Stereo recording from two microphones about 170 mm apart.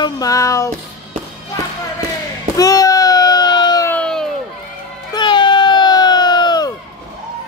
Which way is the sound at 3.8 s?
5° left (ahead or behind).